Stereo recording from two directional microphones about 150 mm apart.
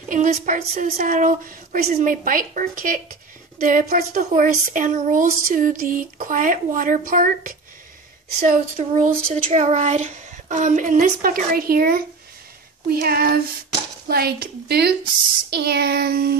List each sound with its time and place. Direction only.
0.1 s speech: 60° right (ahead or behind)
8.7 s speech: 50° right (ahead or behind); by 16.3 s 90° right